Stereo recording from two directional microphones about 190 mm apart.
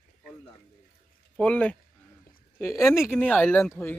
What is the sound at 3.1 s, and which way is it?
Speech, 10° left (ahead or behind).